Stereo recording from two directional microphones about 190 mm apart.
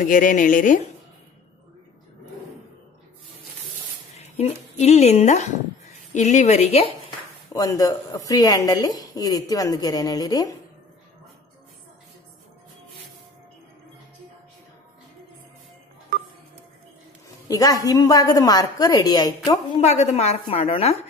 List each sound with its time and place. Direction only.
0.0 s speech: 45° left (ahead or behind)
4.2 s a woman's voice: 35° left (ahead or behind)
7.5 s a woman's voice: 20° left (ahead or behind)
17.5 s a man's voice: 20° left (ahead or behind)
19.8 s a woman's voice: 35° left (ahead or behind)